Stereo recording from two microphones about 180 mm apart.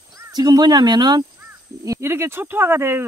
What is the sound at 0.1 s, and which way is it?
Speech, 20° right (ahead or behind).